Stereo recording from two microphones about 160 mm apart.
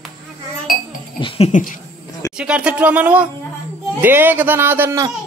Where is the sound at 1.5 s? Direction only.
50° left (ahead or behind).